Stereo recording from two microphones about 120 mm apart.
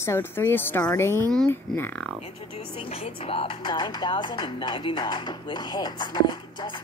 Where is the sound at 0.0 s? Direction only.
20° left (ahead or behind).